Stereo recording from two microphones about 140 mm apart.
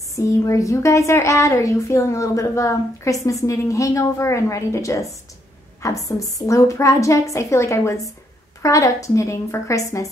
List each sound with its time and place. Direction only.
0.1 s a woman's voice: 20° left (ahead or behind)